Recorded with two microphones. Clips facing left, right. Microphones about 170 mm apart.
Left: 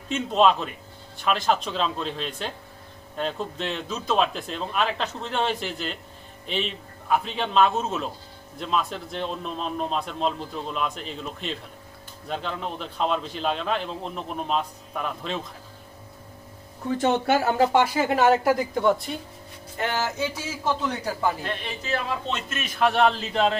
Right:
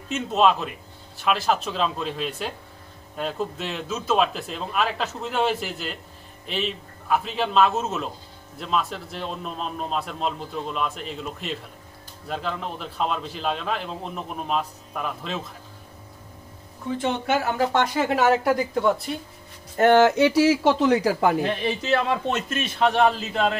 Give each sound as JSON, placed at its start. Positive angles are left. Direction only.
{"t": 0.1, "sound": "a man's voice", "side_deg": -5}
{"t": 17.0, "sound": "speech", "side_deg": 45}
{"t": 17.4, "sound": "speech", "side_deg": 30}
{"t": 17.7, "sound": "a man's voice", "side_deg": 0}
{"t": 19.8, "sound": "a man's voice", "side_deg": -60}
{"t": 21.9, "sound": "a man's voice", "side_deg": -60}
{"t": 22.5, "sound": "a man's voice", "side_deg": -30}